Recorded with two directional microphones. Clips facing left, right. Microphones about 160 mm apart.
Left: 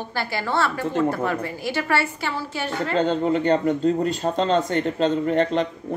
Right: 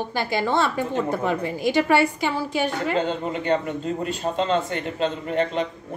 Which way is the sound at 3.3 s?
40° left (ahead or behind).